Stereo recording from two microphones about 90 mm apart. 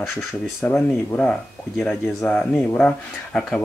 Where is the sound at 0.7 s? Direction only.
15° left (ahead or behind).